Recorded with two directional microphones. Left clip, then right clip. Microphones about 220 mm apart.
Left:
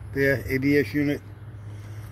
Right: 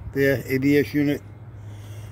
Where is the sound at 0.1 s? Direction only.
15° right (ahead or behind).